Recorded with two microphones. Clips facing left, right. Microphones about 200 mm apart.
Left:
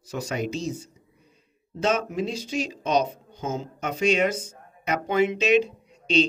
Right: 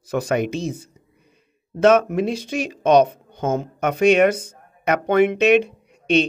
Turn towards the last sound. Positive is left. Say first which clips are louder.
# right 4 dB
turn(degrees=-60)  # may be behind; listen again after turning